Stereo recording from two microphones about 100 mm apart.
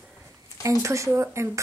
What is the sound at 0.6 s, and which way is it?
Speech, 30° right (ahead or behind).